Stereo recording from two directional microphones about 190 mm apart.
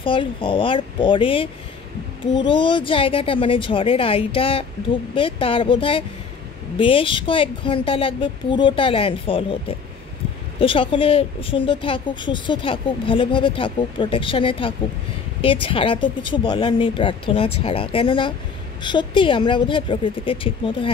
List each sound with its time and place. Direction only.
0.0 s a woman's voice: 25° left (ahead or behind)